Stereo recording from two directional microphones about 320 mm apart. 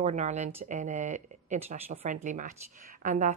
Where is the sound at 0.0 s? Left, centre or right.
Right.